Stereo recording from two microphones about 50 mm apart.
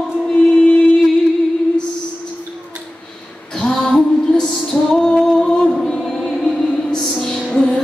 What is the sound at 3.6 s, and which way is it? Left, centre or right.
Music, centre.